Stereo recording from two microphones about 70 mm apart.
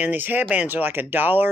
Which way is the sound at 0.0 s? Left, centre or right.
Right.